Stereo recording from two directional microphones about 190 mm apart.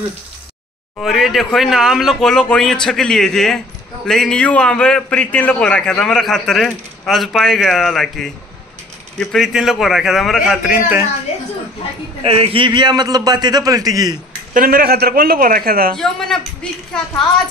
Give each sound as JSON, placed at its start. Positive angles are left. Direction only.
{"t": 0.9, "sound": "speech", "side_deg": 0}
{"t": 12.2, "sound": "a man's voice", "side_deg": -30}
{"t": 14.5, "sound": "a man's voice", "side_deg": -50}
{"t": 16.0, "sound": "speech", "side_deg": 0}